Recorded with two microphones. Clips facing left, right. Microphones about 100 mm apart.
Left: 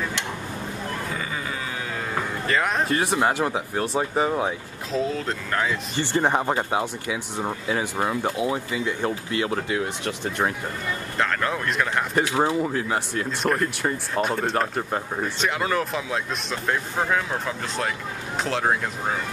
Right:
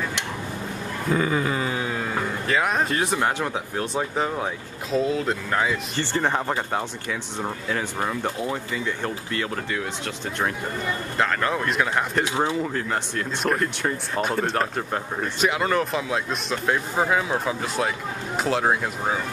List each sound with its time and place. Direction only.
1.1 s a sound: 40° right (ahead or behind)
2.4 s speech: centre (ahead or behind)
4.9 s speech: 5° right (ahead or behind)
5.9 s speech: 15° left (ahead or behind)
11.1 s speech: centre (ahead or behind)
12.4 s speech: 10° left (ahead or behind)